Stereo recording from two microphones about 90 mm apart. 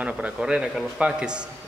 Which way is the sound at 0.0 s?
10° right (ahead or behind).